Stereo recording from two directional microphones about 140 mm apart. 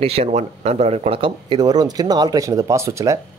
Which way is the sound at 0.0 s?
45° right (ahead or behind).